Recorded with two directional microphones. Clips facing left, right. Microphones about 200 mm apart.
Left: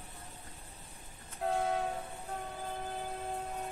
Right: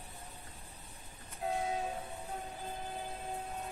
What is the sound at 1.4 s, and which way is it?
Train, 60° left (ahead or behind).